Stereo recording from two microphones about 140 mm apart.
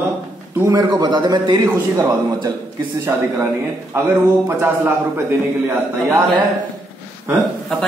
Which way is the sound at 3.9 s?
15° right (ahead or behind).